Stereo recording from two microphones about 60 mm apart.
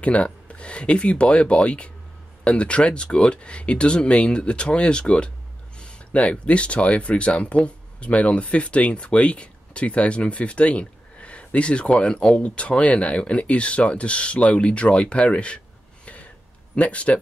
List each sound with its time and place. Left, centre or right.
0.0 s speech: left
5.8 s a sound: centre
6.4 s speech: centre
16.7 s speech: left